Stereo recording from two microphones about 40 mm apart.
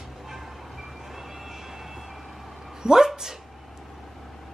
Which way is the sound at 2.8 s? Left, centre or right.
Centre.